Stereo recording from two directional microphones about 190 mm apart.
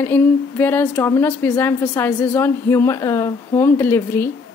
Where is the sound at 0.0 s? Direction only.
10° left (ahead or behind).